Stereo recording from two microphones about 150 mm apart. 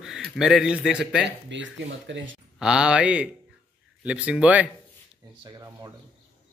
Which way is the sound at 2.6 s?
5° right (ahead or behind).